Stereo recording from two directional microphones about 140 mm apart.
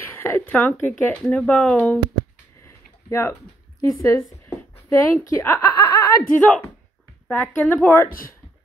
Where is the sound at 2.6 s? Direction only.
20° left (ahead or behind).